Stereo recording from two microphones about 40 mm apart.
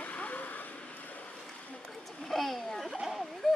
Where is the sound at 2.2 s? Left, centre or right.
Centre.